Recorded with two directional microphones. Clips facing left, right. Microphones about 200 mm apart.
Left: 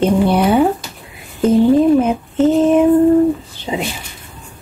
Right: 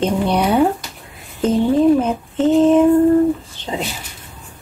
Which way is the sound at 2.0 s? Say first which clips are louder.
Left 4 dB; 10° left (ahead or behind).